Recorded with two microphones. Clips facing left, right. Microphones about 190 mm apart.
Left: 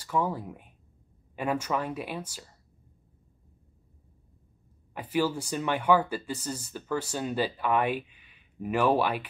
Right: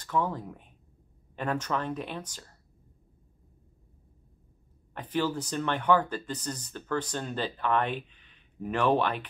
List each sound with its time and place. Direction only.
0.0 s speech: 10° left (ahead or behind)
4.9 s speech: 10° left (ahead or behind)